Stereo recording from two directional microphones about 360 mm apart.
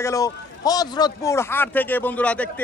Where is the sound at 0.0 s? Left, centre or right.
Centre.